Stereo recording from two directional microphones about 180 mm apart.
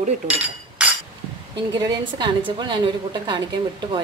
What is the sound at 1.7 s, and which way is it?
A woman's voice, 25° right (ahead or behind).